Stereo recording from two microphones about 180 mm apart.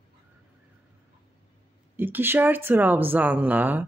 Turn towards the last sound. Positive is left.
turn(degrees=-10)  # may be behind; listen again after turning